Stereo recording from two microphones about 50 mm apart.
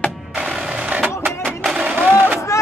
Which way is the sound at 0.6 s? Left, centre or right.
Centre.